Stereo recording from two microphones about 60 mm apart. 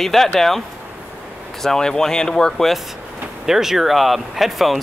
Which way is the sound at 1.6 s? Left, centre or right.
Centre.